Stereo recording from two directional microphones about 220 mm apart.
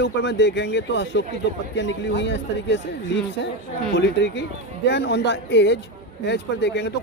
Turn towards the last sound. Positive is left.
turn(degrees=50)  # may be behind; listen again after turning